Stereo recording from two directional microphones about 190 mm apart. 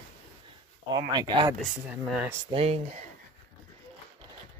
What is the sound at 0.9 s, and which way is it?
Speech, 25° right (ahead or behind).